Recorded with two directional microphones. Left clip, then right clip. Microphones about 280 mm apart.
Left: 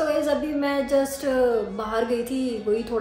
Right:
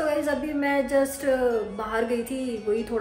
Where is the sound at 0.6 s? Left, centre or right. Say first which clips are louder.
Right 2 dB; centre.